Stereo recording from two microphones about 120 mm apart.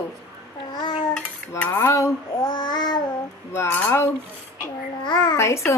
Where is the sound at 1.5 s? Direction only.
20° left (ahead or behind).